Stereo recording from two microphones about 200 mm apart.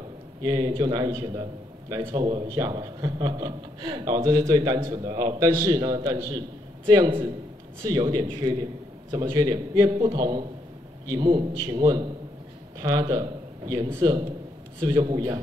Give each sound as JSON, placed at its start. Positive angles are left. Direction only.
{"t": 0.4, "sound": "a man's voice", "side_deg": -20}